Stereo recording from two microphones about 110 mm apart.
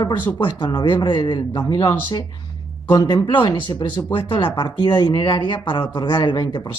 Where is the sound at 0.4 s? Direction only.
45° left (ahead or behind).